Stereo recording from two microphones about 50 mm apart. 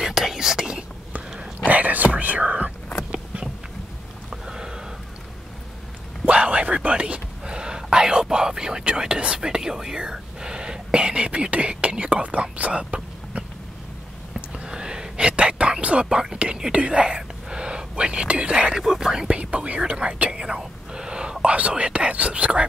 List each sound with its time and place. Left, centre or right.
0.0 s whispering: centre
1.7 s whispering: right
4.3 s a sound: centre
6.2 s whispering: right
14.6 s whispering: centre
18.8 s whispering: centre